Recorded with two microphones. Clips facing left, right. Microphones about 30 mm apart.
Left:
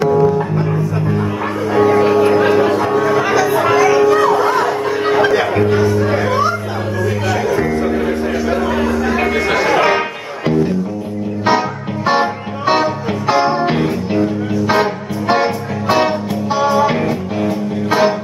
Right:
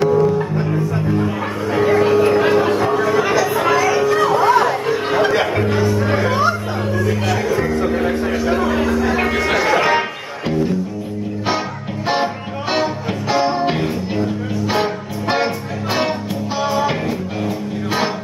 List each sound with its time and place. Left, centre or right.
0.1 s music: centre
5.0 s music: centre
7.9 s a sound: centre
12.1 s music: centre
15.2 s music: centre